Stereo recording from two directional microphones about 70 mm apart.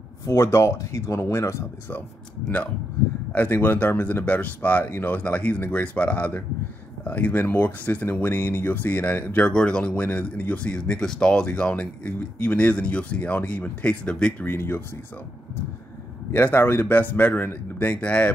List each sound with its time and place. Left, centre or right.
0.2 s speech: left
3.3 s speech: left
14.4 s speech: left
16.3 s speech: left